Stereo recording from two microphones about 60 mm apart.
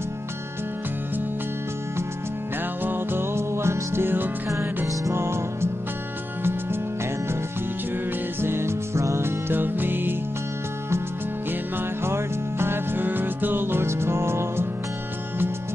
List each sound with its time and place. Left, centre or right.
2.8 s music: right
8.4 s music: right
9.5 s music: right
12.0 s music: right